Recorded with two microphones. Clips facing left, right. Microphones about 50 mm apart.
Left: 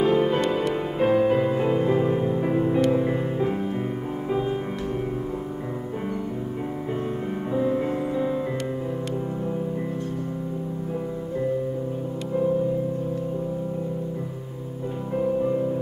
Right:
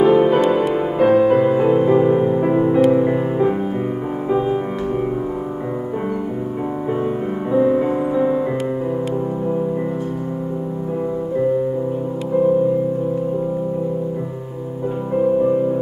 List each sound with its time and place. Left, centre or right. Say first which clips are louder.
0.0 s music: right 8 dB; centre
7.5 s music: right 8 dB; centre
15.1 s music: right 7 dB; centre